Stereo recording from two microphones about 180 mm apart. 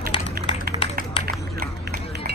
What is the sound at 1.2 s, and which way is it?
Run, 60° right (ahead or behind).